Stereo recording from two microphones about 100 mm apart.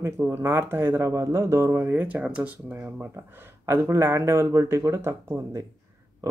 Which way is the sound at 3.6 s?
30° right (ahead or behind).